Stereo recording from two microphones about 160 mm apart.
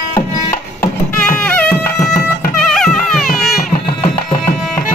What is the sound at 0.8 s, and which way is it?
Music, 5° left (ahead or behind).